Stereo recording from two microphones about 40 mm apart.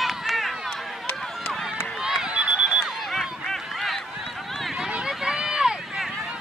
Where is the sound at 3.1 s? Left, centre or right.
Centre.